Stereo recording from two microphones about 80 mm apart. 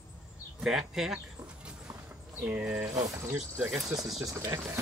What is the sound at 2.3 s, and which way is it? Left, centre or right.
Speech, right.